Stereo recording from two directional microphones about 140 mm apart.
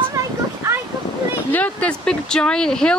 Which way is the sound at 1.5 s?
10° left (ahead or behind).